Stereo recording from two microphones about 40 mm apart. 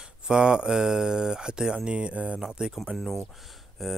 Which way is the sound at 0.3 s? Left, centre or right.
Right.